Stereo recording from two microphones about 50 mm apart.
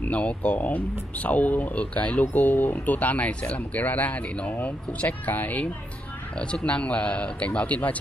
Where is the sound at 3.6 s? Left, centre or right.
Left.